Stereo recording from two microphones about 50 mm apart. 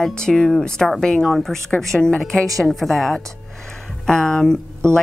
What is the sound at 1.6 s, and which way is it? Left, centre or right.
A woman's voice, centre.